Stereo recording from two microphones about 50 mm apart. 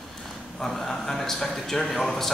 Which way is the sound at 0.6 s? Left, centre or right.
Centre.